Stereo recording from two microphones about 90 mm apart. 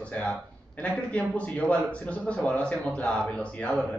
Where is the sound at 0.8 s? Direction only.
15° left (ahead or behind).